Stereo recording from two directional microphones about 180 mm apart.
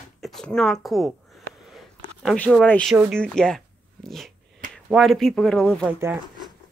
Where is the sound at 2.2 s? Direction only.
5° left (ahead or behind).